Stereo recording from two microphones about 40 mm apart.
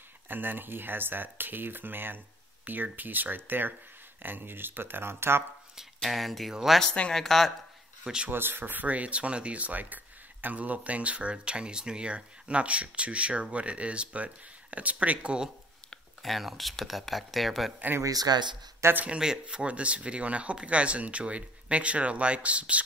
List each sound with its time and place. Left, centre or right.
0.3 s speech: right
5.8 s speech: centre
8.0 s speech: centre
8.3 s speech: right
8.8 s speech: right
16.2 s speech: centre
19.0 s speech: centre
19.4 s speech: right